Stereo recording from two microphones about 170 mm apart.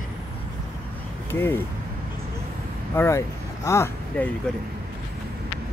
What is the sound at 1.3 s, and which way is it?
Speech, 15° left (ahead or behind).